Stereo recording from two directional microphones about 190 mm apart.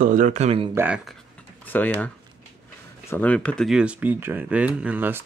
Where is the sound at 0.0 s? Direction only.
45° right (ahead or behind).